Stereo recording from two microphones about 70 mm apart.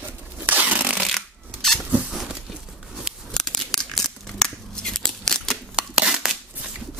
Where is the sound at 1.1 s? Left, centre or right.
Centre.